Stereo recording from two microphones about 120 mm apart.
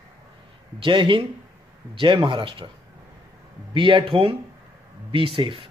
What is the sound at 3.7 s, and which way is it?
Speech, 45° right (ahead or behind).